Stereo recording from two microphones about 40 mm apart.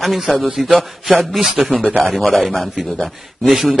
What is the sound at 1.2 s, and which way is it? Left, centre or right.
Speech, centre.